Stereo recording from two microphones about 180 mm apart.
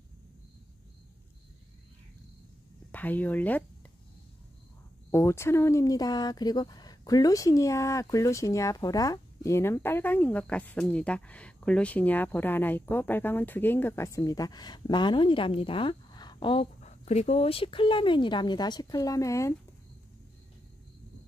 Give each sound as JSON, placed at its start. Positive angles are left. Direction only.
{"t": 2.9, "sound": "speech", "side_deg": 10}
{"t": 5.1, "sound": "speech", "side_deg": 15}